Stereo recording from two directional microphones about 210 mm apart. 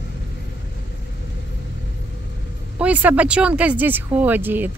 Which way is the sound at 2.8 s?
5° right (ahead or behind).